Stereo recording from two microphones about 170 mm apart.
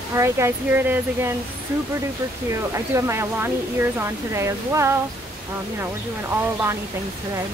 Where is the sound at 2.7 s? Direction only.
15° right (ahead or behind).